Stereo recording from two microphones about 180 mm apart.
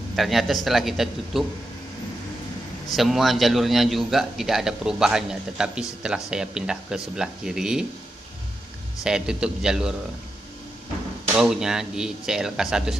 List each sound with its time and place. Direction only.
0.1 s a man's voice: centre (ahead or behind)
2.9 s a man's voice: centre (ahead or behind)
9.0 s a man's voice: 5° right (ahead or behind)
11.3 s a man's voice: 5° right (ahead or behind)